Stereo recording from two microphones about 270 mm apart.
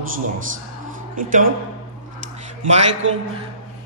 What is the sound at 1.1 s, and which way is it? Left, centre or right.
Speech, right.